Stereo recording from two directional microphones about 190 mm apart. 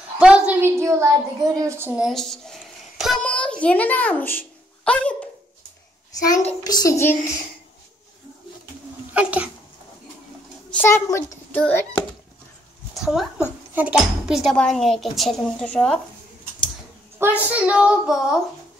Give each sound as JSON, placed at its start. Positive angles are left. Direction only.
{"t": 0.2, "sound": "a woman's voice", "side_deg": -5}
{"t": 6.2, "sound": "a child's voice", "side_deg": 20}
{"t": 9.1, "sound": "sneeze", "side_deg": -5}
{"t": 10.7, "sound": "a child's voice", "side_deg": 10}
{"t": 12.9, "sound": "speech", "side_deg": 0}
{"t": 17.5, "sound": "speech", "side_deg": -5}